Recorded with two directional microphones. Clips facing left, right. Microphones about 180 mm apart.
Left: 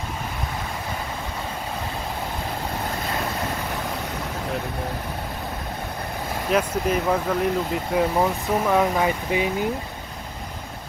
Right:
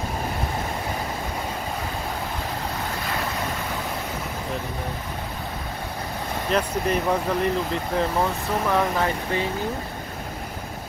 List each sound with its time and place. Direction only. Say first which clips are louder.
6.5 s speech: left 2 dB; 5° left (ahead or behind)